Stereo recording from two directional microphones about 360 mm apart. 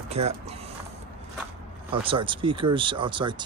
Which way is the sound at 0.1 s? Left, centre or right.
Centre.